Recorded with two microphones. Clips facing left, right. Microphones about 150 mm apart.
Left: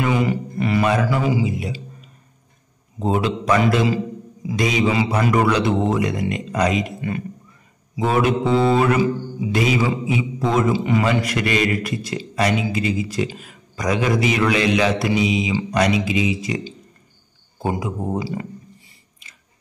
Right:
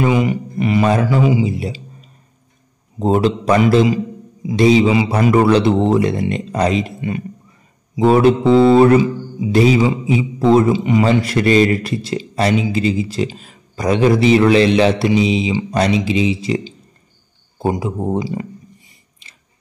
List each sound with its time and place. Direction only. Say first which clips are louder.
0.0 s a sound: right 4 dB; 20° right (ahead or behind)
0.8 s a man's voice: right 5 dB; 35° right (ahead or behind)
3.8 s a man's voice: right 4 dB; 20° right (ahead or behind)
9.8 s a man's voice: right 5 dB; 20° right (ahead or behind)
10.1 s a man's voice: right 9 dB; 30° right (ahead or behind)
10.7 s a man's voice: right 4 dB; 20° right (ahead or behind)
11.1 s a man's voice: right 6 dB; 30° right (ahead or behind)